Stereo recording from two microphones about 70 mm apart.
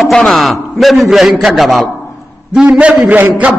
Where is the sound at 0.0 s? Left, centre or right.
Centre.